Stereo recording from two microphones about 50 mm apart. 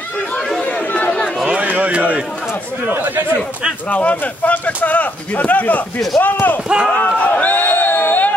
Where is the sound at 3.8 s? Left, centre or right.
Left.